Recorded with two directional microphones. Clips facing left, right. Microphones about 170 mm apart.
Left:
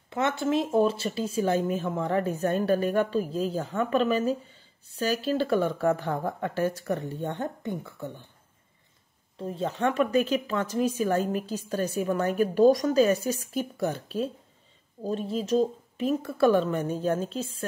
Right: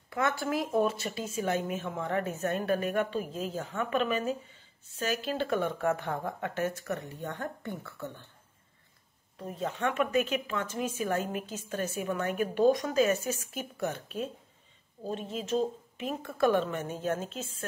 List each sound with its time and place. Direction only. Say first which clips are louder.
0.1 s speech: left 4 dB; 25° left (ahead or behind)
9.4 s speech: left 5 dB; 30° left (ahead or behind)